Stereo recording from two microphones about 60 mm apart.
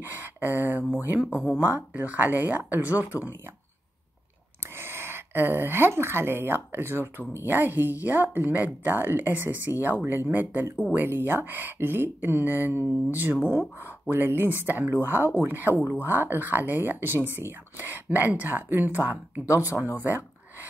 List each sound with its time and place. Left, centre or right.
0.0 s speech: right
2.0 s speech: right
4.7 s speech: right